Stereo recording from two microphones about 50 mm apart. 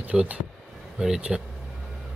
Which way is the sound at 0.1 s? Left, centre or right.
Right.